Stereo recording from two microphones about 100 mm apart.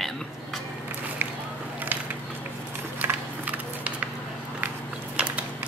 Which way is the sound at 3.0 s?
15° right (ahead or behind).